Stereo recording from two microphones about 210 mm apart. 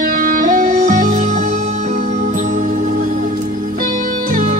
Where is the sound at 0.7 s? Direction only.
40° right (ahead or behind).